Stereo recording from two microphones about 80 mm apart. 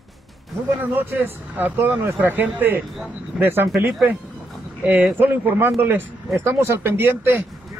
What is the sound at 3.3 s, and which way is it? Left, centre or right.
Speech, right.